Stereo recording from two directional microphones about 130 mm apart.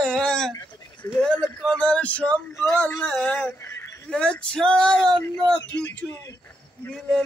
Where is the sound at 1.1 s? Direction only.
5° left (ahead or behind).